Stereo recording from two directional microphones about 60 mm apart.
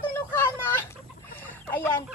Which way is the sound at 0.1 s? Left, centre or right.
Left.